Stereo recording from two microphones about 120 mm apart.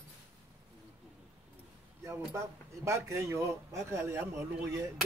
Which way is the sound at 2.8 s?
25° right (ahead or behind).